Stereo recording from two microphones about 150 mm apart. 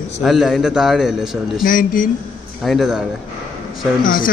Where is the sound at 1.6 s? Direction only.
65° left (ahead or behind).